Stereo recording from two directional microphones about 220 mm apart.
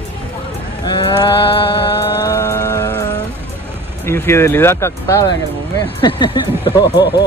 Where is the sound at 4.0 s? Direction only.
10° left (ahead or behind).